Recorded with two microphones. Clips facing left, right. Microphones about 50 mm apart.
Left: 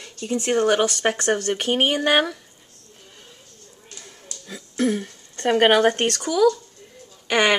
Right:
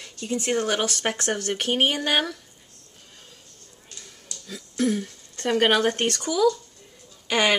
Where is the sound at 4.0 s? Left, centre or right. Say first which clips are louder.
Left 2 dB; left.